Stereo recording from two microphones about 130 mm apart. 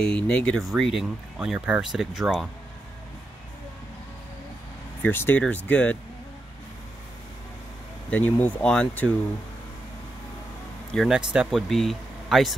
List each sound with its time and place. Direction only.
0.0 s speech: 10° left (ahead or behind)
5.0 s speech: 15° left (ahead or behind)
8.1 s speech: 10° left (ahead or behind)
10.9 s speech: centre (ahead or behind)